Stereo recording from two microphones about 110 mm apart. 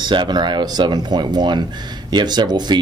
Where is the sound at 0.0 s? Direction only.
45° right (ahead or behind).